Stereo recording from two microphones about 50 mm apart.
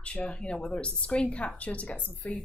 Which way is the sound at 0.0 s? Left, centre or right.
Left.